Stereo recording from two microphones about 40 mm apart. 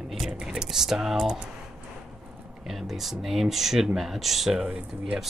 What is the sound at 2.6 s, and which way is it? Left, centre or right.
Speech, centre.